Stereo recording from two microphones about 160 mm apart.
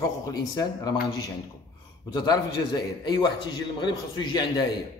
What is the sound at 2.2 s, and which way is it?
A man's voice, 25° left (ahead or behind).